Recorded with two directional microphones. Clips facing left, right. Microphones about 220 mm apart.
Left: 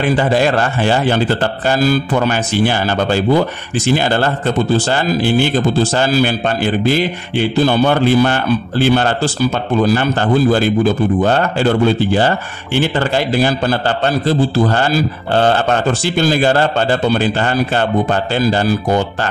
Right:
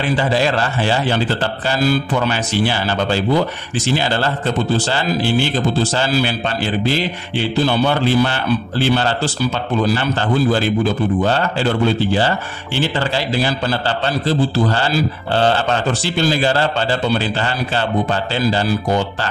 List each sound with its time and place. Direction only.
0.0 s a man's voice: 50° left (ahead or behind)